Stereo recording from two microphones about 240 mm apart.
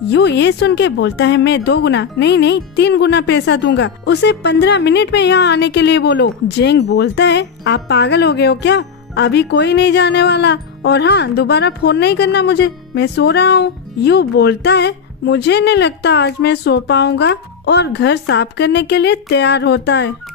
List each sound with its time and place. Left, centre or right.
0.1 s speech: left